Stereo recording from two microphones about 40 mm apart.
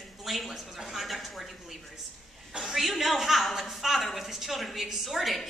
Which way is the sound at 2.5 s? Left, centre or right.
Centre.